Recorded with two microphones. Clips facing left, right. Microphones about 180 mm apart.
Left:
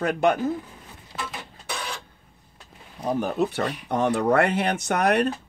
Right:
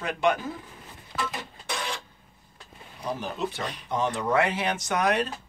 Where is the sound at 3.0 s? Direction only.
50° left (ahead or behind).